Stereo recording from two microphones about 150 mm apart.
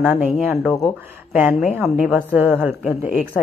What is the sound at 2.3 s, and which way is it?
Speech, 15° right (ahead or behind).